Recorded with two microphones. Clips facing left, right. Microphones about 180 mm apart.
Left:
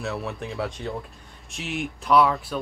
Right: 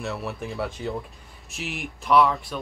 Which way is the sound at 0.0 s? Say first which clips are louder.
Left 1 dB; centre (ahead or behind).